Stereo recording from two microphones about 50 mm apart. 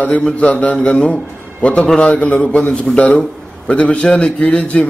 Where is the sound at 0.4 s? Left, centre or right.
Left.